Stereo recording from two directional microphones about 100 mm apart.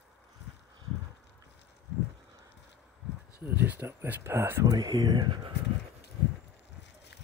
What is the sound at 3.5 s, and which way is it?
Speech, 20° right (ahead or behind).